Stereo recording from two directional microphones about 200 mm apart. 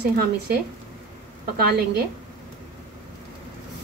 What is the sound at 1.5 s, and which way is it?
Speech, 55° right (ahead or behind).